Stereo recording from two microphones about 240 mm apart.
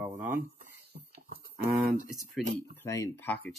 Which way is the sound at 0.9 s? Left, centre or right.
Right.